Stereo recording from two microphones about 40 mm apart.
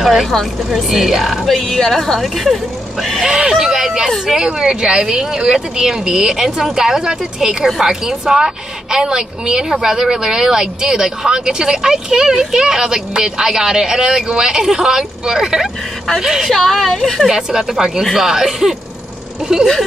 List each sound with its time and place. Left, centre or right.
0.0 s a woman's voice: centre
3.3 s speech: centre
3.5 s speech: centre
16.4 s a woman's voice: centre
17.0 s a woman's voice: centre